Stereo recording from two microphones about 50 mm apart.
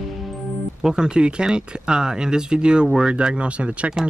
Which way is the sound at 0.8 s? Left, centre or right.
Centre.